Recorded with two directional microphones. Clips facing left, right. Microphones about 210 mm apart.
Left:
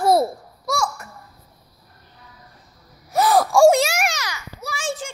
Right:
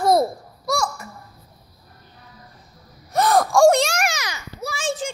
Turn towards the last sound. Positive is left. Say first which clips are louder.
# right 2 dB
turn(degrees=-25)  # may be behind; listen again after turning